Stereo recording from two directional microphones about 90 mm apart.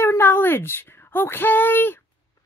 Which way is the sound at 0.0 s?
25° left (ahead or behind).